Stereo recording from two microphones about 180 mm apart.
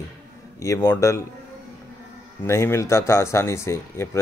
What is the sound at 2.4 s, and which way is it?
A man's voice, 15° left (ahead or behind).